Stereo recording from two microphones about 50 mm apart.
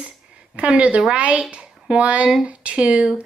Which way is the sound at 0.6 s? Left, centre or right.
Right.